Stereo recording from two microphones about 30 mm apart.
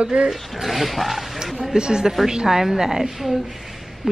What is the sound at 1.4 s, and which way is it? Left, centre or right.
A woman's voice, right.